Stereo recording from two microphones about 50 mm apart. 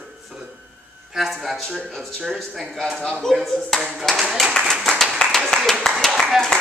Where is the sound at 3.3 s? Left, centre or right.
Centre.